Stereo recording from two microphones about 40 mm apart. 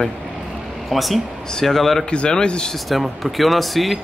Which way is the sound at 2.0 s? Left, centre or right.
Left.